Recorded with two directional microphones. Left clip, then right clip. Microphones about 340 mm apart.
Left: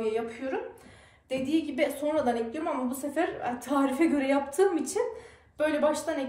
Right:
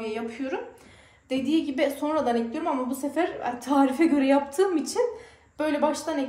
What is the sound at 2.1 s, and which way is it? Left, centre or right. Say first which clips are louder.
Speech: right 2 dB; right.